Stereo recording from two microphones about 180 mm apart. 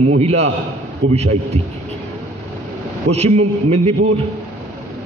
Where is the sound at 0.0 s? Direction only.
35° right (ahead or behind).